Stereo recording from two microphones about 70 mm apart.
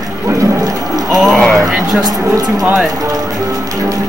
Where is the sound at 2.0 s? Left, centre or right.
Right.